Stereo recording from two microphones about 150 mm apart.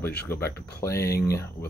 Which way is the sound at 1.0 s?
90° left.